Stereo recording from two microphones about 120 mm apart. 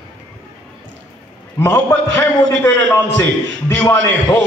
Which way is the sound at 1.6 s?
20° left (ahead or behind).